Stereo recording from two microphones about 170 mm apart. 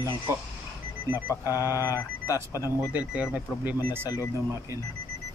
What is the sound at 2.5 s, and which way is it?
Speech, 20° left (ahead or behind).